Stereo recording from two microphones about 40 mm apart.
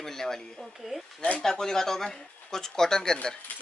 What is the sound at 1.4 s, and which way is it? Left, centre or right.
Speech, centre.